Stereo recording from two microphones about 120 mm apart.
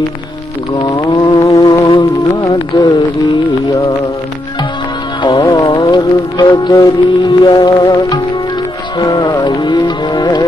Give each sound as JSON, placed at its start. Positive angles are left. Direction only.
{"t": 0.8, "sound": "music", "side_deg": 30}
{"t": 2.5, "sound": "a sound", "side_deg": 45}
{"t": 5.4, "sound": "music", "side_deg": 30}